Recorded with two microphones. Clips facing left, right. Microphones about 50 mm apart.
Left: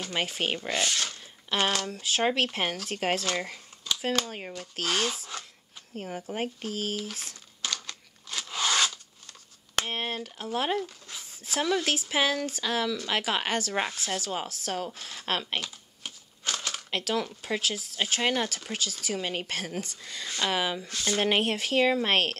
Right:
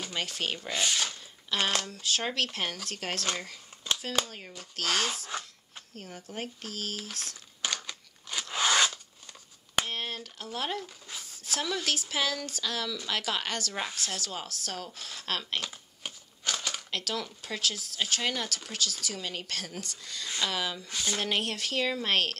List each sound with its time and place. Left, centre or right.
0.1 s speech: centre
0.6 s speech: centre
1.8 s speech: centre
4.3 s speech: left
4.6 s speech: centre
5.9 s speech: left
7.6 s crunch: centre
9.8 s speech: centre
10.9 s zipper: centre
11.2 s a sound: centre
11.6 s speech: centre
16.0 s crumpling: centre
16.9 s speech: centre